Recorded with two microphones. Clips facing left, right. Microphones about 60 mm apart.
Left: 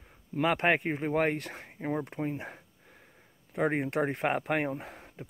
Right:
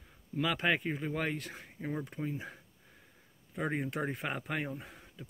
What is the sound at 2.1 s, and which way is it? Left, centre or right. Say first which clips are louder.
Speech: left 4 dB; left.